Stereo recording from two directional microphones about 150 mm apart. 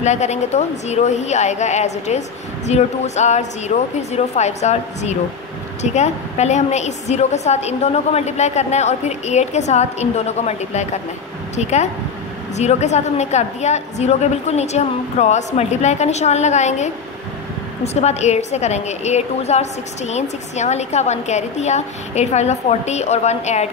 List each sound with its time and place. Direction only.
0.0 s a woman's voice: 50° left (ahead or behind)